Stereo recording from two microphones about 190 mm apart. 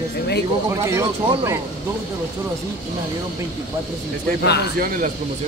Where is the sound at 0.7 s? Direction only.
15° right (ahead or behind).